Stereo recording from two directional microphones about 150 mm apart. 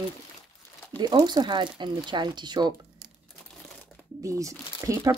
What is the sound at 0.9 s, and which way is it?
Speech, 25° right (ahead or behind).